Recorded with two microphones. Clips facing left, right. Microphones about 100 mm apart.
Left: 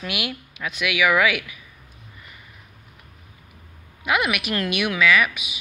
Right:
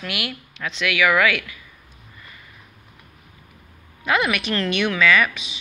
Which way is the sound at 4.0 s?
10° left (ahead or behind).